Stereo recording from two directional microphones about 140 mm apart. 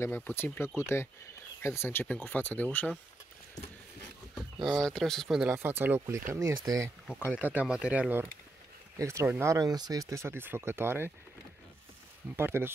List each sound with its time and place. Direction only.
0.0 s speech: 15° left (ahead or behind)
4.6 s speech: 5° left (ahead or behind)
5.5 s speech: 15° right (ahead or behind)
12.4 s speech: 15° right (ahead or behind)